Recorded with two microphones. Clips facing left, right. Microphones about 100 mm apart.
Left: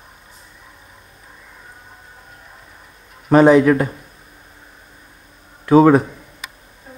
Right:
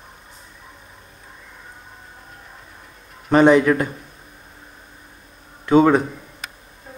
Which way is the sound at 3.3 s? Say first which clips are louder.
Left 3 dB; 5° left (ahead or behind).